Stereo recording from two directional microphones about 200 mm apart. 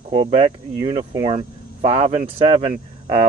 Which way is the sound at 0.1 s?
25° right (ahead or behind).